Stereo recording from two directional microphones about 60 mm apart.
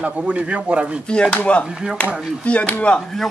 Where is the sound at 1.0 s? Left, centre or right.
Centre.